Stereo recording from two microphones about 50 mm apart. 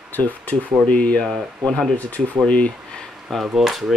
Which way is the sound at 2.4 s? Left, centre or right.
Left.